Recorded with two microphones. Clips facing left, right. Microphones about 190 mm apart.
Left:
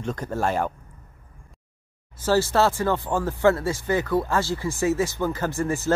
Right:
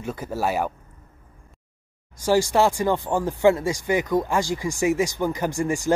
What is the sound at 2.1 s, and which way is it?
Speech, 15° right (ahead or behind).